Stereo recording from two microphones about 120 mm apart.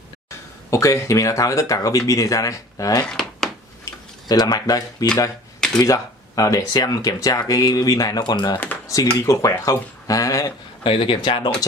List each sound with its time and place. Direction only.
0.7 s speech: 25° left (ahead or behind)
3.0 s a sound: 5° left (ahead or behind)
3.9 s tick-tock: 25° left (ahead or behind)
4.3 s speech: 35° left (ahead or behind)
8.8 s speech: 30° left (ahead or behind)
10.8 s speech: 50° left (ahead or behind)